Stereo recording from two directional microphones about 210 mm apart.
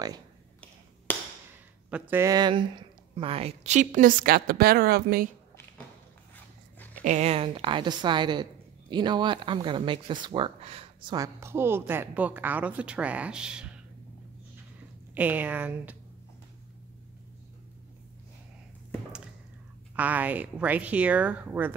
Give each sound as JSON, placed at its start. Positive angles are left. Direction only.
{"t": 1.9, "sound": "speech", "side_deg": -5}
{"t": 7.0, "sound": "a woman's voice", "side_deg": -35}
{"t": 15.1, "sound": "speech", "side_deg": -10}
{"t": 20.0, "sound": "speech", "side_deg": -10}